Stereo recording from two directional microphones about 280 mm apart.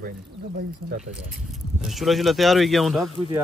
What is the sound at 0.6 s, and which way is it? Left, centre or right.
Speech, right.